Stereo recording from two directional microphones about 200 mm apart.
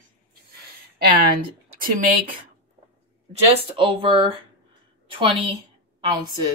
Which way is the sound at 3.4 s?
25° right (ahead or behind).